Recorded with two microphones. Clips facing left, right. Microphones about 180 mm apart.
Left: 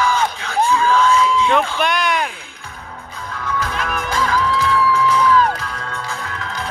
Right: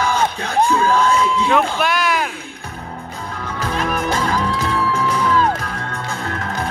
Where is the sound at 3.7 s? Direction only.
40° right (ahead or behind).